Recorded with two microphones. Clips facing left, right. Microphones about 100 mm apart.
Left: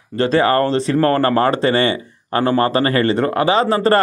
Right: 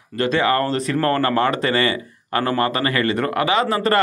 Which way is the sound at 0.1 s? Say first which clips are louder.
Left 4 dB; 35° left (ahead or behind).